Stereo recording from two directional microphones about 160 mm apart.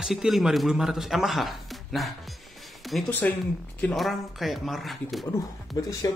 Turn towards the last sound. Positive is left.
turn(degrees=25)  # may be behind; listen again after turning